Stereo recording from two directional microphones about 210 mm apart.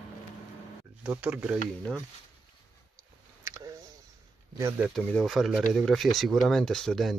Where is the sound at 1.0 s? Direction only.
5° right (ahead or behind).